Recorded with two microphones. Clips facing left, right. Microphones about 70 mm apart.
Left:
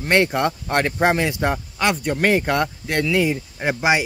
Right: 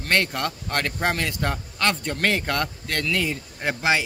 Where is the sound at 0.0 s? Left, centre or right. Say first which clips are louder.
Left 6 dB; centre.